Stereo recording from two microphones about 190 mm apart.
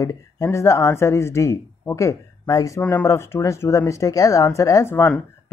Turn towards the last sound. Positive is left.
turn(degrees=10)  # may be behind; listen again after turning